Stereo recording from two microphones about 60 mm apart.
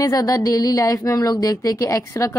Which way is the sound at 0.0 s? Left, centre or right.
Left.